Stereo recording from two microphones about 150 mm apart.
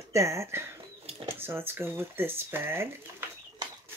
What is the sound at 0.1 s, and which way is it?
Speech, 20° right (ahead or behind).